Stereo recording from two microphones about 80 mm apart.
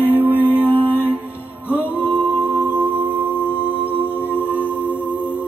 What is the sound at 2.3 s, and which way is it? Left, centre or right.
Music, right.